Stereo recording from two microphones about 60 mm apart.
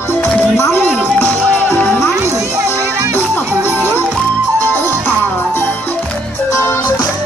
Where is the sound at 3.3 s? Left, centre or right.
Left.